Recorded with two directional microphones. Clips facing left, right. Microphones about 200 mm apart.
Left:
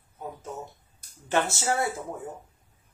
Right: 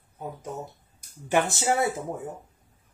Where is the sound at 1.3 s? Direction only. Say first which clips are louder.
Right 2 dB; 15° right (ahead or behind).